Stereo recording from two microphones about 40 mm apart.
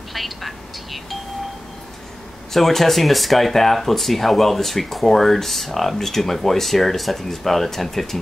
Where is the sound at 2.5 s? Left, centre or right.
Centre.